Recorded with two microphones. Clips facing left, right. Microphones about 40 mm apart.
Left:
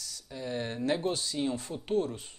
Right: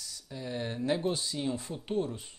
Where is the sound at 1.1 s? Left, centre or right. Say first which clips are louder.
Even; right.